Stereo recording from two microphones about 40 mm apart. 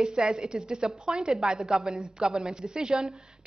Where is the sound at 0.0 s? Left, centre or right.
Centre.